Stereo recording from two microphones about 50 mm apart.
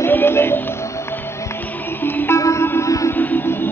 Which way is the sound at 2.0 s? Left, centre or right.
Left.